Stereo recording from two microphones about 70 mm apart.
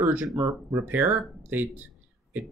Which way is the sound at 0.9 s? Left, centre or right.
Right.